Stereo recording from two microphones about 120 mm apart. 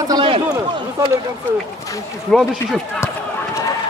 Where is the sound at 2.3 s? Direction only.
Centre (ahead or behind).